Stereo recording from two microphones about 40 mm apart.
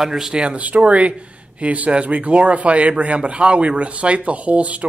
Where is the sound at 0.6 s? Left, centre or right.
Right.